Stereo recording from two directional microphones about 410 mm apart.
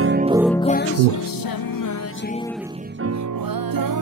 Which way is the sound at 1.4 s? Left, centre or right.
Left.